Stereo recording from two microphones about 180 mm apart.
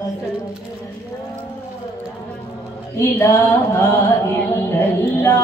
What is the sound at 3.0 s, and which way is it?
Music, 15° left (ahead or behind).